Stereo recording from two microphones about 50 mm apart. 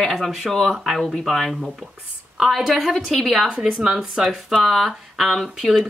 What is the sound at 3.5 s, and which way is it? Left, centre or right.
Speech, centre.